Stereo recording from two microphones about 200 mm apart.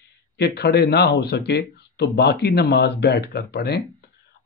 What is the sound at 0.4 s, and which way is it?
Speech, 55° left (ahead or behind).